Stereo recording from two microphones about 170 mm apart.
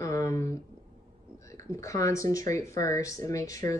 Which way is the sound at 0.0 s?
20° left (ahead or behind).